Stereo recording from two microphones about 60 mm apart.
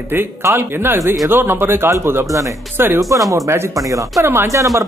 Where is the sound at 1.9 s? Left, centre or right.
Right.